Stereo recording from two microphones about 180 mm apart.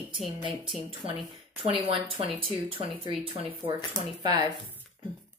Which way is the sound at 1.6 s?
30° right (ahead or behind).